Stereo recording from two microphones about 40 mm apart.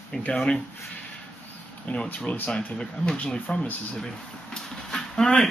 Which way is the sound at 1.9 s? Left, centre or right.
Left.